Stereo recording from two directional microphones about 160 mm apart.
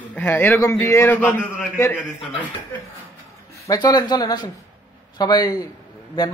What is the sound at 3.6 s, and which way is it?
A man's voice, 25° left (ahead or behind).